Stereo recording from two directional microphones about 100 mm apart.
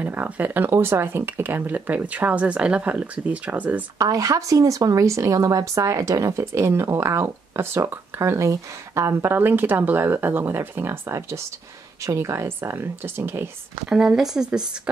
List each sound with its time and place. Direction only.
0.0 s speech: 15° right (ahead or behind)
4.0 s speech: 35° right (ahead or behind)
13.8 s speech: 5° right (ahead or behind)